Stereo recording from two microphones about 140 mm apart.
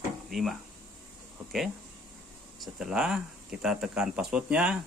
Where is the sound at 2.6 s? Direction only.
5° right (ahead or behind).